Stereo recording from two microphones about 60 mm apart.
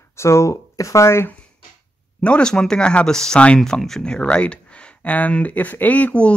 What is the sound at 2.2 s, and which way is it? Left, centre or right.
Speech, centre.